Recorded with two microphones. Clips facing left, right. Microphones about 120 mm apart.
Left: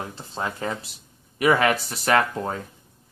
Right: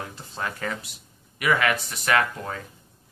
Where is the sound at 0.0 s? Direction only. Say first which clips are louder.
Left 3 dB; 25° left (ahead or behind).